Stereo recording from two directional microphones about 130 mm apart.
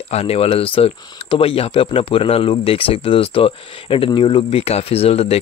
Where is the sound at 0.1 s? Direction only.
50° left (ahead or behind).